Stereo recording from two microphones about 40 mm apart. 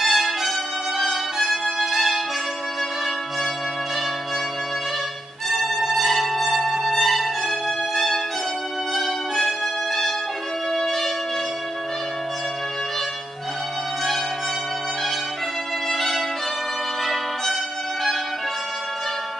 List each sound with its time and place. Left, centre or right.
0.0 s music: centre
5.5 s music: centre
10.7 s shofar: centre
15.9 s music: centre